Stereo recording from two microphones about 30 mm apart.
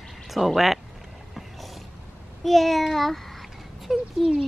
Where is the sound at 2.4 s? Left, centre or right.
Centre.